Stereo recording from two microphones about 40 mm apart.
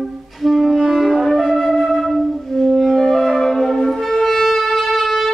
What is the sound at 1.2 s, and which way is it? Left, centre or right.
Flute, centre.